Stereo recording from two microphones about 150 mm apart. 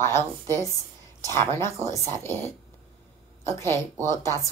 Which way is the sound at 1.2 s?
20° left (ahead or behind).